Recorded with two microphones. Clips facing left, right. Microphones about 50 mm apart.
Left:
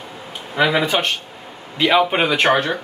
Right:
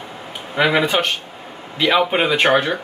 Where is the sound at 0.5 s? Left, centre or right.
Centre.